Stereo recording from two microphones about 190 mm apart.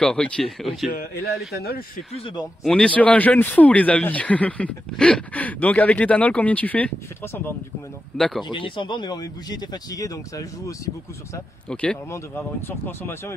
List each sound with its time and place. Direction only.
0.0 s speech: 5° left (ahead or behind)
0.9 s a man's voice: 55° left (ahead or behind)
2.1 s speech: 25° left (ahead or behind)
2.6 s speech: 5° left (ahead or behind)
8.2 s speech: centre (ahead or behind)
8.5 s speech: 25° left (ahead or behind)
11.3 s speech: 5° left (ahead or behind)